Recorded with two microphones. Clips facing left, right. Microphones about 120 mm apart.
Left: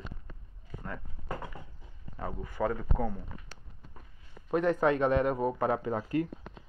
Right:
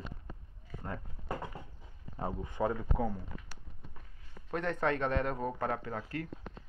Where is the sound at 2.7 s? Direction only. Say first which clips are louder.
Left 1 dB; 5° right (ahead or behind).